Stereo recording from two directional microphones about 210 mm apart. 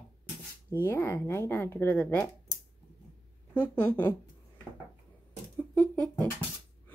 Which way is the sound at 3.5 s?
10° left (ahead or behind).